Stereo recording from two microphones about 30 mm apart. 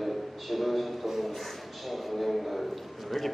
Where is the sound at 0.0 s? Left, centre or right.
Centre.